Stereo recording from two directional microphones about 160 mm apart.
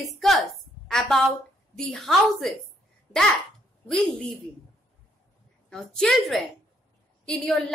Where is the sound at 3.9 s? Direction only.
Centre (ahead or behind).